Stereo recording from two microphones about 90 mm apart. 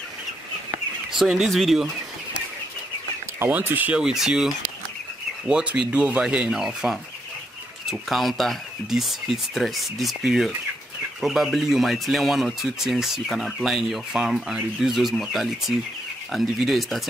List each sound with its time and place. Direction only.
1.1 s speech: 5° right (ahead or behind)
3.3 s speech: 20° right (ahead or behind)
4.0 s speech: 5° right (ahead or behind)